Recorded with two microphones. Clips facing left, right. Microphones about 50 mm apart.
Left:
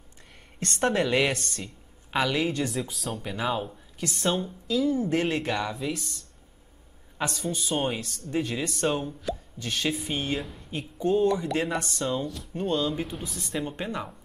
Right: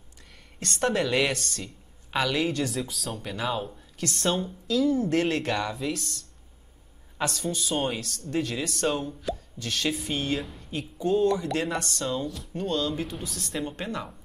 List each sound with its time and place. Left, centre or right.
0.6 s a woman's voice: left
2.0 s a woman's voice: centre